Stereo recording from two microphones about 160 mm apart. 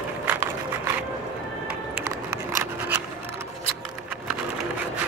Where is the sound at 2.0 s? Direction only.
15° right (ahead or behind).